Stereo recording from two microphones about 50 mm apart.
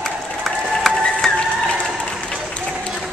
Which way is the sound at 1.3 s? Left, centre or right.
Left.